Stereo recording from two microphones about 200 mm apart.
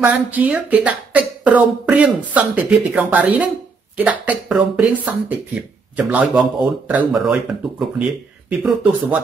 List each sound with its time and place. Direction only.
0.0 s speech: 10° right (ahead or behind)